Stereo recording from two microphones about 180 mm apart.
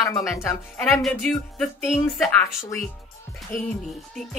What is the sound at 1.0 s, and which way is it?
Speech, centre (ahead or behind).